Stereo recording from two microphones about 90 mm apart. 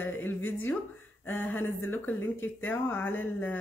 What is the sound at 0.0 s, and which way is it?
Speech, 25° left (ahead or behind).